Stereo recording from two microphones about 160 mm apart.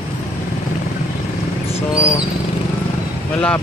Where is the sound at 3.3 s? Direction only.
5° left (ahead or behind).